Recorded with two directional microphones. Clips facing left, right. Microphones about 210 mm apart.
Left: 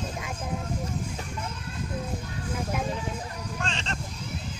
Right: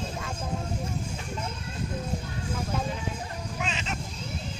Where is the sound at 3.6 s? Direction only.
5° right (ahead or behind).